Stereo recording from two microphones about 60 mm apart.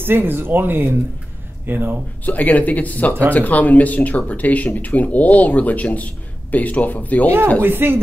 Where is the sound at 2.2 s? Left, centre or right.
Left.